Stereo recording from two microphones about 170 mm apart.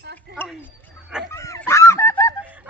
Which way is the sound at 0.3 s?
75° right (ahead or behind).